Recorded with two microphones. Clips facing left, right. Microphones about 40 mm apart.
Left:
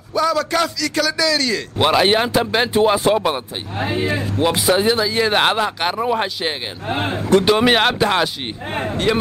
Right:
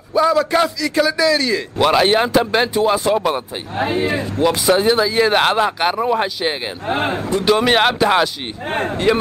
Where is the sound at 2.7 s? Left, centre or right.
Centre.